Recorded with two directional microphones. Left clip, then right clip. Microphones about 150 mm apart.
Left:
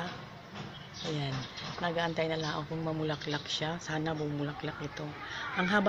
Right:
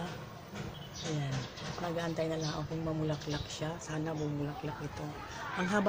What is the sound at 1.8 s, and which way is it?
Speech, 30° left (ahead or behind).